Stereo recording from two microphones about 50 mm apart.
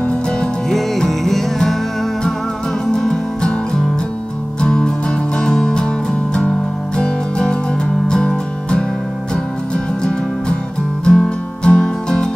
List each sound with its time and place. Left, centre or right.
0.0 s music: centre
0.7 s music: centre
2.9 s music: centre
11.1 s music: centre